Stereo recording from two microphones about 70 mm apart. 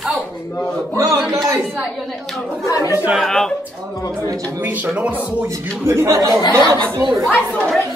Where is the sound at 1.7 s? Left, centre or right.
Centre.